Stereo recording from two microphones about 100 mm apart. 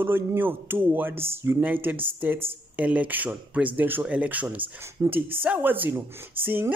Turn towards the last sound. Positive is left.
turn(degrees=-20)  # may be behind; listen again after turning